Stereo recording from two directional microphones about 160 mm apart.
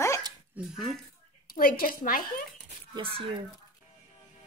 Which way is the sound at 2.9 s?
35° right (ahead or behind).